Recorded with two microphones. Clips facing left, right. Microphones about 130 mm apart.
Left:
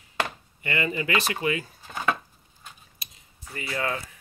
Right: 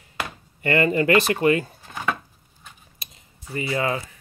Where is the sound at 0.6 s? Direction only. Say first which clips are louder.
Right 9 dB; 50° right (ahead or behind).